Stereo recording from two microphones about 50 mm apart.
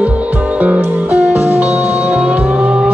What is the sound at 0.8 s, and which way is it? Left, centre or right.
Music, right.